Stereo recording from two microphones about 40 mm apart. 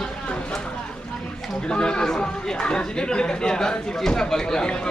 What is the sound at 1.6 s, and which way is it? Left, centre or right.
Speech, left.